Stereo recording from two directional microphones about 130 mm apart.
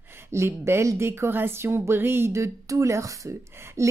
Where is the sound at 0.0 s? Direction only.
15° right (ahead or behind).